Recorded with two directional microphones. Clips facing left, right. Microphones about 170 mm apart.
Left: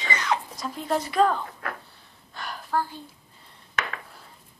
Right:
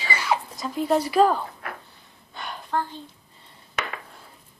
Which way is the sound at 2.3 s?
Centre (ahead or behind).